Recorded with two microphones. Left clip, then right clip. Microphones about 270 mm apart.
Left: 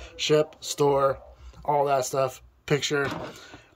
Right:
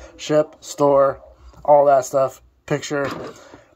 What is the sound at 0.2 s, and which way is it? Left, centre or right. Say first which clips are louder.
Speech: right 4 dB; centre.